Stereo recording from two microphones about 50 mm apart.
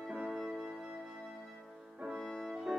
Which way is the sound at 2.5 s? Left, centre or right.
Centre.